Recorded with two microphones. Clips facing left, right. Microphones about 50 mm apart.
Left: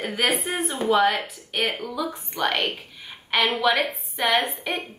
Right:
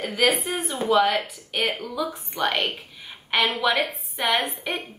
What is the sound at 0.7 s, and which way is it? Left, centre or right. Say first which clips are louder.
Speech: left 1 dB; centre.